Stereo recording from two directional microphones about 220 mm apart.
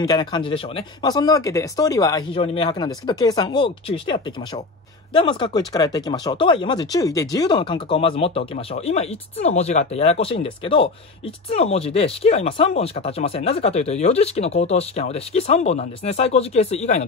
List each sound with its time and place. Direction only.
0.0 s speech: 20° left (ahead or behind)